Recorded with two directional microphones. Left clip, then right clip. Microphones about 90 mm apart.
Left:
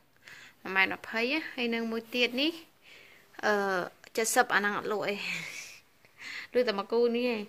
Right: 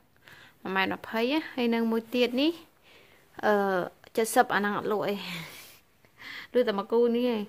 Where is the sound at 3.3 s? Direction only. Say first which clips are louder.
Right 3 dB; 55° right (ahead or behind).